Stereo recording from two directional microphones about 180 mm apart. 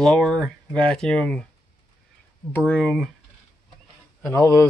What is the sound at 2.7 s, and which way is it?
Speech, 5° left (ahead or behind).